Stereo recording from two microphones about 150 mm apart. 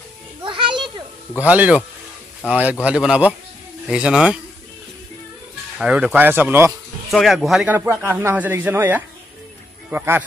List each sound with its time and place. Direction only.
0.4 s children playing: 35° right (ahead or behind)
1.5 s speech: 10° right (ahead or behind)
5.8 s speech: 5° right (ahead or behind)
7.1 s speech: centre (ahead or behind)